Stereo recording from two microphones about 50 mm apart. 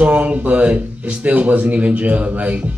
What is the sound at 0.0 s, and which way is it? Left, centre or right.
Speech, right.